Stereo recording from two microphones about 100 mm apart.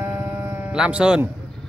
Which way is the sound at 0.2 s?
25° right (ahead or behind).